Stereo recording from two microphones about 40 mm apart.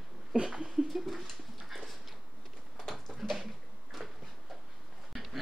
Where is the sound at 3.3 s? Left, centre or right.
Centre.